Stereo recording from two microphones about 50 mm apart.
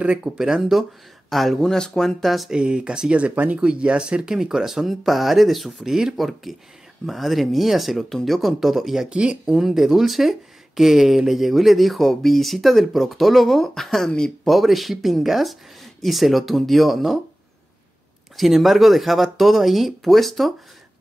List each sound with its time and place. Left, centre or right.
0.0 s speech: centre
1.3 s speech: centre
2.5 s speech: right
9.1 s speech: right
9.6 s speech: centre
18.3 s speech: centre